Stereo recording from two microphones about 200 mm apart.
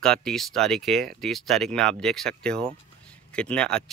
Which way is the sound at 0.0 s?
5° left (ahead or behind).